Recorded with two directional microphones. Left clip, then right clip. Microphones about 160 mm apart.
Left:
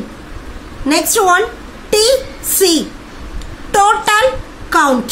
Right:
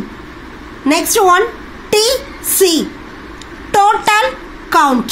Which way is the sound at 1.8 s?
20° right (ahead or behind).